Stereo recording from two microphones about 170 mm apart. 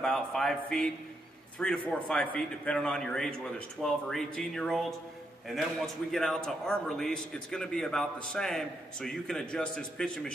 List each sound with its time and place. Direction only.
0.0 s a man's voice: centre (ahead or behind)